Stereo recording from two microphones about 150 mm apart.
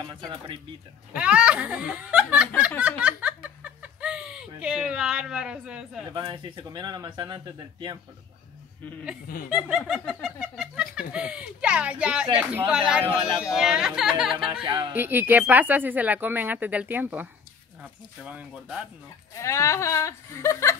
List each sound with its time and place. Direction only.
1.1 s speech: 5° right (ahead or behind)
3.0 s a sound: 10° right (ahead or behind)
6.1 s speech: 30° right (ahead or behind)
9.5 s speech: 10° right (ahead or behind)
14.3 s speech: 35° right (ahead or behind)
14.9 s speech: 15° right (ahead or behind)
19.3 s speech: 20° left (ahead or behind)